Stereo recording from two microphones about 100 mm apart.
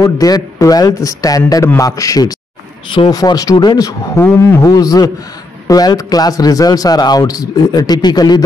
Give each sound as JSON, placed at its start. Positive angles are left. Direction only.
{"t": 0.0, "sound": "a man's voice", "side_deg": 40}
{"t": 4.6, "sound": "a man's voice", "side_deg": 40}